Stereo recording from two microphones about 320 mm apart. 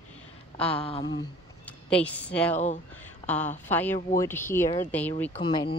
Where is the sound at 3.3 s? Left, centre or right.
Centre.